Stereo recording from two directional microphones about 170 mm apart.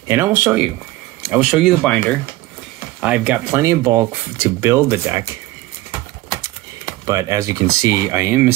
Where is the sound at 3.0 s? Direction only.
10° right (ahead or behind).